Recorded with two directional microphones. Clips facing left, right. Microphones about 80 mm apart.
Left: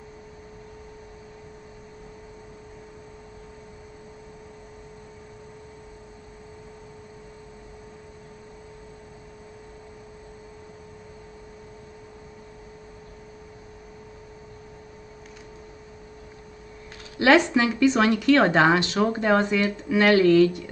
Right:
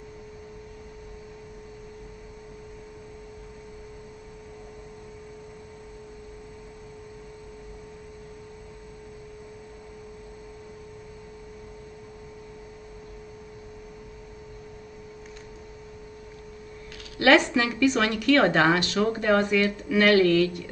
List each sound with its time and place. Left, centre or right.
17.2 s speech: left